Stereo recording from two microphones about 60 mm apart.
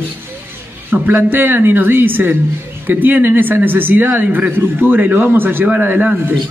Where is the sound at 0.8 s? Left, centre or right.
Right.